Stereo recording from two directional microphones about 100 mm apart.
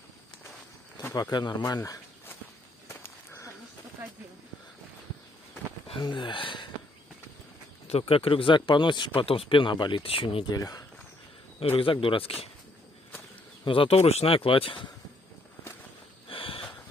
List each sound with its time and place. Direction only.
1.0 s a sound: 45° left (ahead or behind)
1.3 s speech: 45° left (ahead or behind)
1.6 s speech: 35° left (ahead or behind)
2.9 s a sound: 25° left (ahead or behind)
5.9 s speech: 55° left (ahead or behind)
7.9 s speech: 70° left (ahead or behind)
10.5 s speech: 40° left (ahead or behind)
11.6 s speech: 65° left (ahead or behind)
13.7 s speech: 70° left (ahead or behind)
16.3 s snort: 65° left (ahead or behind)